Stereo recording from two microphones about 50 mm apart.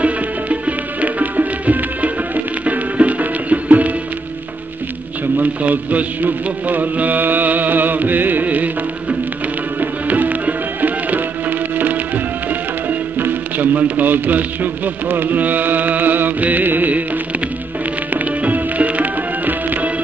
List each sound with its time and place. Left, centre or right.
0.0 s music: right
5.4 s a man's voice: right
9.8 s music: right
13.2 s a man's voice: right
18.1 s music: right